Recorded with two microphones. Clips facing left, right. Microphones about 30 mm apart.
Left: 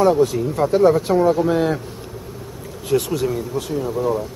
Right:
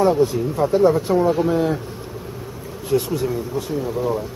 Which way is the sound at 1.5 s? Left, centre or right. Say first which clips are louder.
Left 1 dB; left.